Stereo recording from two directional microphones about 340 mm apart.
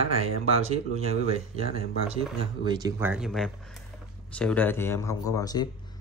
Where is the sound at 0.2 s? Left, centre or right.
Centre.